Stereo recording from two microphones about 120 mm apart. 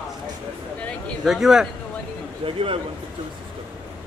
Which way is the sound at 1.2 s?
5° right (ahead or behind).